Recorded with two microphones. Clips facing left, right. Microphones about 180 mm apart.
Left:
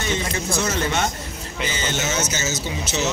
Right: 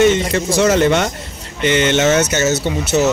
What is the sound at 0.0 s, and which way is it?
Speech, 80° right.